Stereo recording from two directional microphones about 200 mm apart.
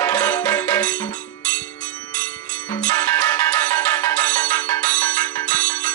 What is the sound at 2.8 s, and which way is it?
Ringtone, 10° left (ahead or behind).